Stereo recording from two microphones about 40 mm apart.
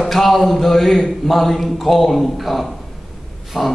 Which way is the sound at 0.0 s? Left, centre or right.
Centre.